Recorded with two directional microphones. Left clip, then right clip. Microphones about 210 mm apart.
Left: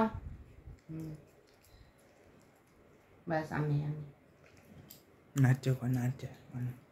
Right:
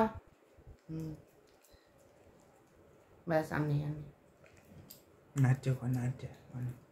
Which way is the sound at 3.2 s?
40° right (ahead or behind).